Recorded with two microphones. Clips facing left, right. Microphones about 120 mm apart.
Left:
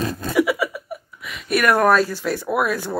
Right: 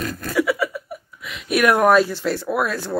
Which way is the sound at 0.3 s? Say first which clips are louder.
Left 1 dB; 10° left (ahead or behind).